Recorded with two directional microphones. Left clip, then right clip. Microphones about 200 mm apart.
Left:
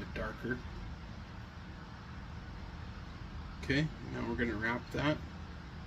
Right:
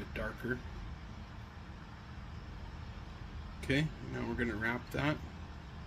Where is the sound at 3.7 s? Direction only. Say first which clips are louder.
Even; 20° right (ahead or behind).